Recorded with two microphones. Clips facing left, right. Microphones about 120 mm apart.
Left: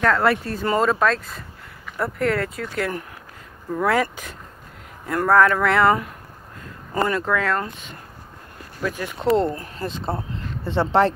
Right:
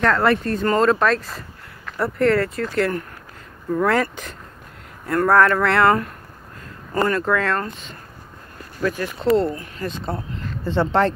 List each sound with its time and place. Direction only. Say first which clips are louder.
0.0 s speech: right 1 dB; centre (ahead or behind); by 9.5 s 20° left (ahead or behind)
9.6 s speech: right 1 dB; 30° left (ahead or behind)